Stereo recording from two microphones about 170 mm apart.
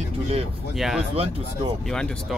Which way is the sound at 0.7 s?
Centre (ahead or behind).